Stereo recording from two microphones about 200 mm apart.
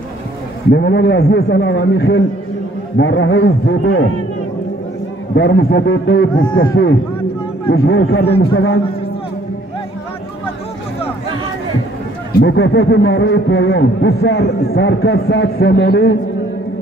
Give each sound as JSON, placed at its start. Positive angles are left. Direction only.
{"t": 0.7, "sound": "speech", "side_deg": 55}
{"t": 3.0, "sound": "speech", "side_deg": 65}
{"t": 5.3, "sound": "a man's voice", "side_deg": 55}
{"t": 12.4, "sound": "speech", "side_deg": 60}